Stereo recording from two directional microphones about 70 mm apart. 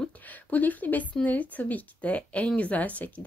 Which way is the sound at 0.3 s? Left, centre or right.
Left.